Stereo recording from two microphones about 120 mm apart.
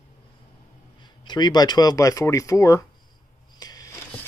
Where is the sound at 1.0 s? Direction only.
40° left (ahead or behind).